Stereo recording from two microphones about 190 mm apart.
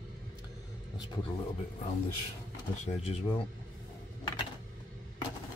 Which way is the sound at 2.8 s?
35° left (ahead or behind).